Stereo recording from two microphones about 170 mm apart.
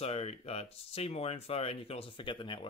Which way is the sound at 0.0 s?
40° left (ahead or behind).